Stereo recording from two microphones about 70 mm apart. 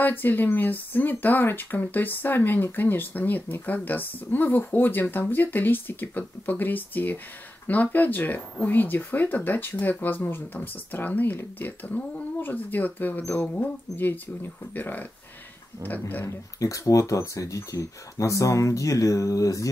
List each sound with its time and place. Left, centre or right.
0.0 s speech: left
16.3 s speech: left